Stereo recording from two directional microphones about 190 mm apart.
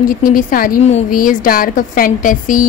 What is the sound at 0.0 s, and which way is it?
A woman's voice, 45° left (ahead or behind).